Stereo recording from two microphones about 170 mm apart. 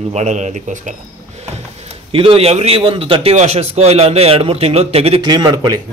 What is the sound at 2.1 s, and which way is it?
A man's voice, 35° right (ahead or behind).